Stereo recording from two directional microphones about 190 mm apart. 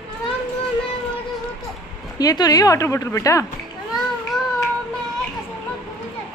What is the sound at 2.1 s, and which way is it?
Speech, 20° left (ahead or behind).